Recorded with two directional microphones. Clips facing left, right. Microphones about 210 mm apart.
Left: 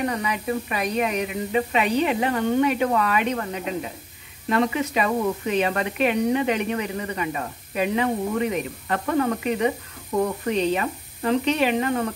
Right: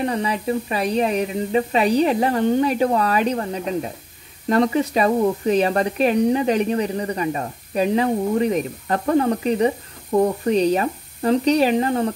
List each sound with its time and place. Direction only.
0.0 s speech: 30° right (ahead or behind)